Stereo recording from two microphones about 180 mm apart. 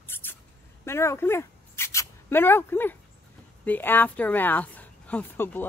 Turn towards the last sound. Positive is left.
turn(degrees=10)  # may be behind; listen again after turning